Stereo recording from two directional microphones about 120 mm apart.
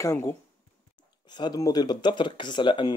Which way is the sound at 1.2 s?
40° left (ahead or behind).